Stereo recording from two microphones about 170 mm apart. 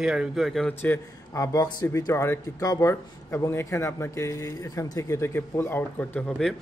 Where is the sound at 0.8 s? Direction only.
15° left (ahead or behind).